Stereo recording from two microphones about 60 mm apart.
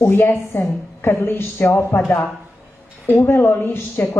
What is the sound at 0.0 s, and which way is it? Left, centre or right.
Speech, left.